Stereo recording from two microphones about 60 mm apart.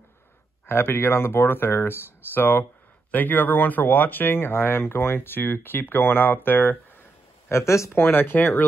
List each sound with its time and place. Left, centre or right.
0.7 s speech: left
7.4 s speech: left
8.0 s speech: left